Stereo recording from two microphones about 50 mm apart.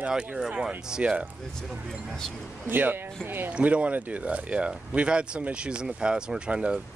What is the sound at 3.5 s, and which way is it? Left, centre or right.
Speech, right.